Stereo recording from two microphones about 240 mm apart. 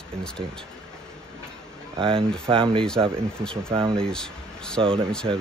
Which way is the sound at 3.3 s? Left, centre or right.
Centre.